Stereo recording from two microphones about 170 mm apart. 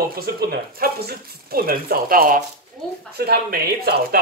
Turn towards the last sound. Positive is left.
turn(degrees=-65)  # may be behind; listen again after turning